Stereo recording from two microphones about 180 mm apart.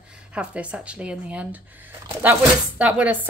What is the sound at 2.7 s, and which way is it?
Speech, 10° right (ahead or behind).